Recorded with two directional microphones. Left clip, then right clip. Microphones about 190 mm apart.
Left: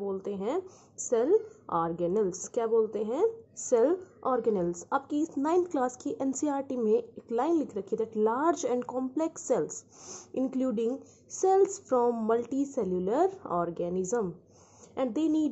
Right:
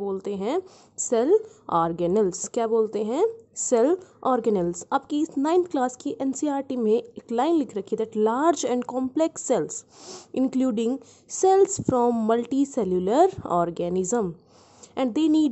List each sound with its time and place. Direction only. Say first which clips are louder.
0.0 s a woman's voice: right 5 dB; 45° right (ahead or behind)